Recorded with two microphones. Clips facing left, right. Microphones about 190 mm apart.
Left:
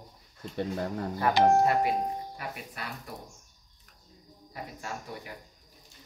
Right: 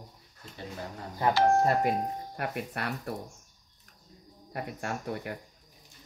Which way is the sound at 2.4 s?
60° right (ahead or behind).